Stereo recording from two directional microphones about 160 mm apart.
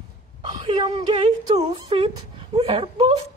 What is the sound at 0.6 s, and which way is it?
A woman's voice, 30° right (ahead or behind).